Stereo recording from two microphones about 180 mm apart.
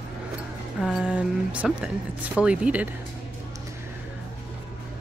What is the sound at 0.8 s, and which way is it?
Speech, 5° right (ahead or behind).